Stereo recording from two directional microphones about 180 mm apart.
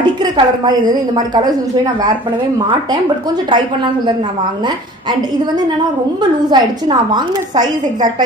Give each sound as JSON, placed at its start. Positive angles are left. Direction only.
{"t": 0.2, "sound": "a woman's voice", "side_deg": -20}
{"t": 3.4, "sound": "a woman's voice", "side_deg": -25}
{"t": 6.5, "sound": "a woman's voice", "side_deg": -25}